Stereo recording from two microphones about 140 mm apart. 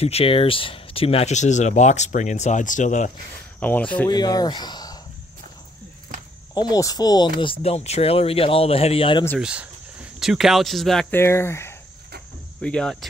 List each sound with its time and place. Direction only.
0.0 s speech: 45° left (ahead or behind); by 3.1 s 60° left (ahead or behind)
3.5 s speech: 10° left (ahead or behind)
4.1 s speech: 30° left (ahead or behind)
6.5 s speech: 30° left (ahead or behind)
9.4 s speech: 10° right (ahead or behind)
11.1 s speech: 15° left (ahead or behind)
12.6 s speech: 5° left (ahead or behind)